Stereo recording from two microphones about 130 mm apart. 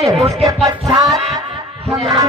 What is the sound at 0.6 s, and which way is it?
Music, 30° right (ahead or behind).